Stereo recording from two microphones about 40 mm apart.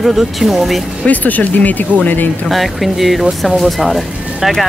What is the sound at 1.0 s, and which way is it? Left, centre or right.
Speech, left.